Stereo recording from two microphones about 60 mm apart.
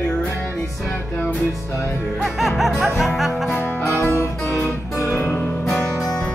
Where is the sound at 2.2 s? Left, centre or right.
Centre.